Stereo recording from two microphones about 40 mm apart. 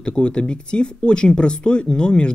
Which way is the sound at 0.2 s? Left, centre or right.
Left.